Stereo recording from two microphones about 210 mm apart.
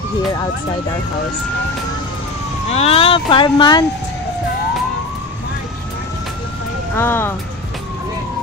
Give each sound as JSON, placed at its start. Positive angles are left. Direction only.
{"t": 2.7, "sound": "speech", "side_deg": 30}
{"t": 7.0, "sound": "speech", "side_deg": 10}